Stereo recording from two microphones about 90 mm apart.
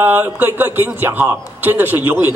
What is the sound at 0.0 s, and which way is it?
A man's voice, 20° right (ahead or behind).